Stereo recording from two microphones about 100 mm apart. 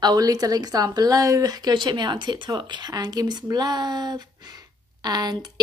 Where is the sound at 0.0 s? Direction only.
40° right (ahead or behind).